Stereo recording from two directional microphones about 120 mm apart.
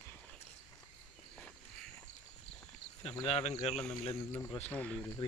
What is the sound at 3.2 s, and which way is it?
Speech, 65° left (ahead or behind).